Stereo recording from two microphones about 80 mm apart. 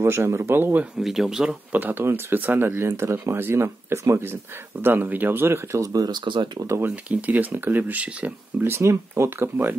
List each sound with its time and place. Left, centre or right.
0.0 s speech: right
0.9 s speech: centre
1.7 s speech: right
5.8 s speech: right
6.8 s speech: right
8.6 s speech: right